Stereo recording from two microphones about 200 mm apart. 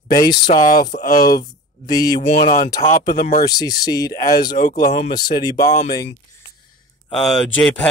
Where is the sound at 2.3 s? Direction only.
45° left (ahead or behind).